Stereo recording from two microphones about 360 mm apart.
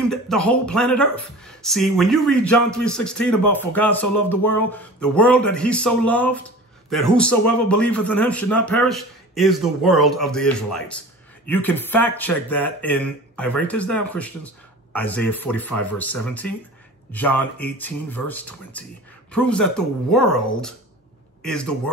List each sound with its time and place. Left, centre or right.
0.0 s a man's voice: centre